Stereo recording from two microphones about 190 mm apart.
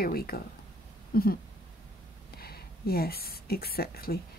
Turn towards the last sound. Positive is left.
turn(degrees=55)  # may be behind; listen again after turning